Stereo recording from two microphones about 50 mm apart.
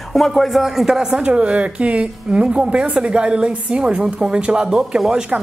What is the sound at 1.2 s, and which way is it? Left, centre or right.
A woman's voice, right.